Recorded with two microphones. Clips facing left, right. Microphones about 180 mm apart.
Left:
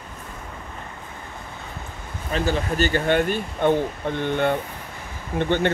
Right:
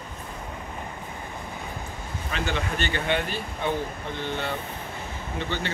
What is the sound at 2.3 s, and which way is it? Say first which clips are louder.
Speech: left 6 dB; 35° left (ahead or behind).